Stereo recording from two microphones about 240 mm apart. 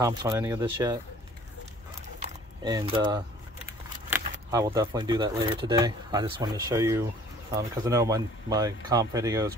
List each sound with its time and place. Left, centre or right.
0.0 s speech: centre
2.6 s speech: centre
4.5 s speech: centre